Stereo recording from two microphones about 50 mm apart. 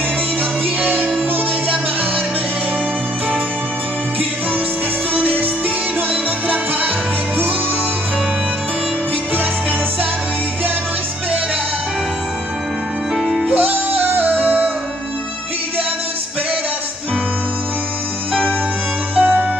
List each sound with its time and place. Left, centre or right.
0.7 s music: right
5.1 s music: right
9.3 s music: right
13.1 s music: centre
13.5 s music: right
19.1 s music: right